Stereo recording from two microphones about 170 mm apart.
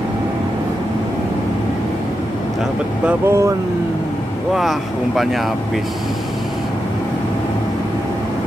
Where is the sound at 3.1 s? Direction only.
15° right (ahead or behind).